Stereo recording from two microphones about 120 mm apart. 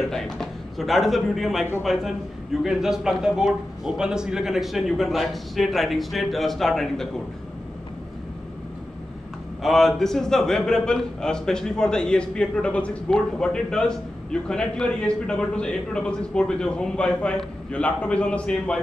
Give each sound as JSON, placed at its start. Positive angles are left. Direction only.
{"t": 0.1, "sound": "a man's voice", "side_deg": 0}
{"t": 9.6, "sound": "a man's voice", "side_deg": 0}